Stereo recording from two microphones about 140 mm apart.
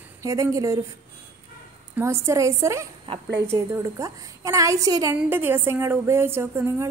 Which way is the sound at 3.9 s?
25° right (ahead or behind).